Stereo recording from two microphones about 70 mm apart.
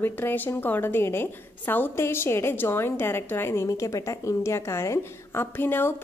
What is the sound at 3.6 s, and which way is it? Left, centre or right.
A woman's voice, left.